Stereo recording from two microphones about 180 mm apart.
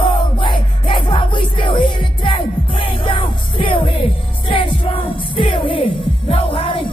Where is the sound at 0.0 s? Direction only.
25° left (ahead or behind).